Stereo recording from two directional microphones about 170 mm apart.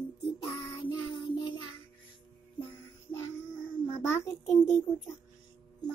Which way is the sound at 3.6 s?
15° left (ahead or behind).